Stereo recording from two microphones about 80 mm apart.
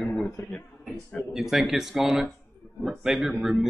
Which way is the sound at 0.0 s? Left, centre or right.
Centre.